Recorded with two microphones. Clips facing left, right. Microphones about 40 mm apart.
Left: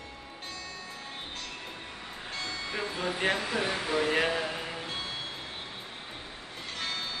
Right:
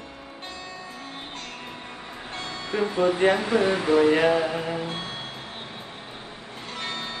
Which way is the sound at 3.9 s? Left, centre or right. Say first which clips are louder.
Right 8 dB; centre.